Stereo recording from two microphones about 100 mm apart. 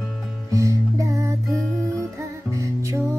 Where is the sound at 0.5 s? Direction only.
35° right (ahead or behind).